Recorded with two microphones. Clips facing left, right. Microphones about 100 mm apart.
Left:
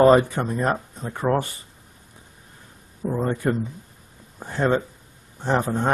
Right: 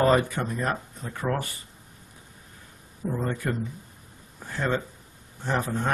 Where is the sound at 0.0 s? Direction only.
25° left (ahead or behind).